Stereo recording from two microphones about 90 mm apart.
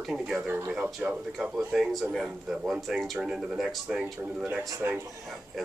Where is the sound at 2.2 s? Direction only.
15° right (ahead or behind).